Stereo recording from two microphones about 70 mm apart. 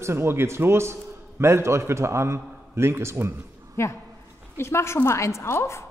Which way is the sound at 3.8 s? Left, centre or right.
Left.